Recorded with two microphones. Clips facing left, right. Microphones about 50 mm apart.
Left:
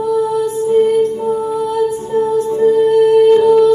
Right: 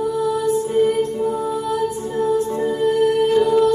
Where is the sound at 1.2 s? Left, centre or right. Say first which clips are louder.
Left 4 dB; left.